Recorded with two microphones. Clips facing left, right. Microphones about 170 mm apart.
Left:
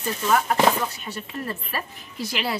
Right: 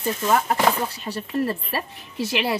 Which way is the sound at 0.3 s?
30° right (ahead or behind).